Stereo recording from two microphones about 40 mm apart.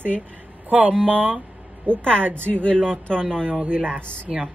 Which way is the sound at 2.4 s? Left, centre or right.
Left.